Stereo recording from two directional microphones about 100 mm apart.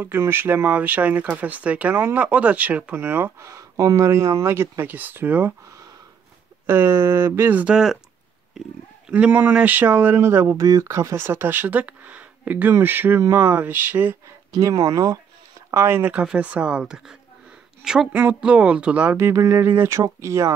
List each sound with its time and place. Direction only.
0.0 s speech: 20° right (ahead or behind)
6.6 s speech: 25° right (ahead or behind); by 8.0 s 10° right (ahead or behind)
9.1 s speech: 15° right (ahead or behind)
14.6 s speech: 40° right (ahead or behind)
15.7 s speech: 20° right (ahead or behind)
19.1 s speech: 25° right (ahead or behind)